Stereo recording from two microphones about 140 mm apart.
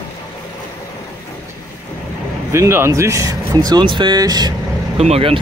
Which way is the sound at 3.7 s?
30° right (ahead or behind).